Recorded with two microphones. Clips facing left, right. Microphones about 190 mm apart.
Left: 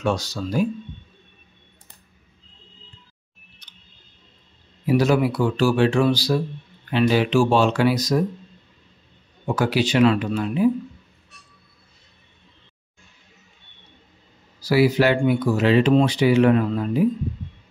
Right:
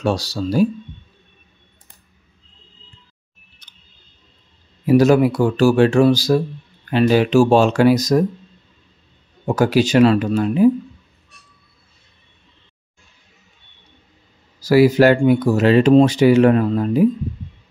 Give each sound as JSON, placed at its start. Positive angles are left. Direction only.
{"t": 0.0, "sound": "speech", "side_deg": -35}
{"t": 4.8, "sound": "speech", "side_deg": -45}
{"t": 9.5, "sound": "speech", "side_deg": -45}
{"t": 14.6, "sound": "speech", "side_deg": -45}